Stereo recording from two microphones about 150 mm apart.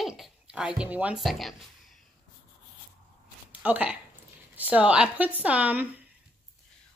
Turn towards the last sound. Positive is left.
turn(degrees=-10)  # may be behind; listen again after turning